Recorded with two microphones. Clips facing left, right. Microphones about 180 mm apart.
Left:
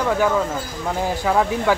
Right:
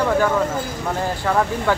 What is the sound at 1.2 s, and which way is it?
Speech, 5° left (ahead or behind).